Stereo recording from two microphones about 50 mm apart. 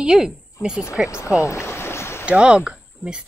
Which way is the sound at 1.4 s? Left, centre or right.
Left.